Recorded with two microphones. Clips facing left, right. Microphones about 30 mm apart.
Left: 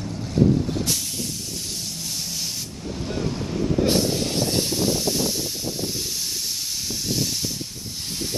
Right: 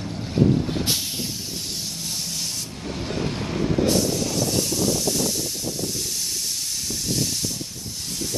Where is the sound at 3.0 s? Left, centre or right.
Right.